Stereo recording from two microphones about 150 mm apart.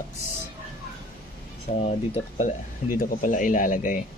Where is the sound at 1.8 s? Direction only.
50° left (ahead or behind).